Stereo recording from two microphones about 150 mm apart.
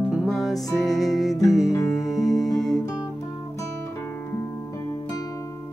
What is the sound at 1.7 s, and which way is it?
Music, 20° left (ahead or behind).